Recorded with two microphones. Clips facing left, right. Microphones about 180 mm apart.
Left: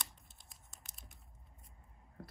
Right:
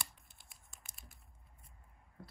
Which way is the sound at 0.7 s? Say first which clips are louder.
Even; centre (ahead or behind).